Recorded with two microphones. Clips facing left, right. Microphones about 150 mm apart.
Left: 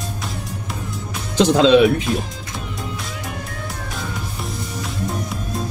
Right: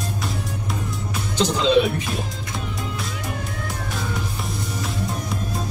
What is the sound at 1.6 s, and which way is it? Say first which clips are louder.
Speech: left 5 dB; 90° left.